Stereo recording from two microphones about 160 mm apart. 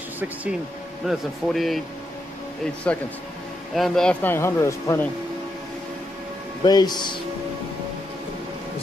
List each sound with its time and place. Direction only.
0.2 s a man's voice: 10° right (ahead or behind); by 5.0 s 20° left (ahead or behind)
6.6 s speech: 25° left (ahead or behind)